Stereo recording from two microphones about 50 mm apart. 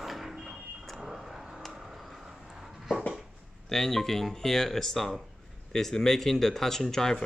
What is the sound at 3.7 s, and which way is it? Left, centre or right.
Speech, centre.